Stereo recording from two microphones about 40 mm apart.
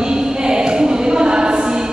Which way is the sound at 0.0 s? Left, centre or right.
Centre.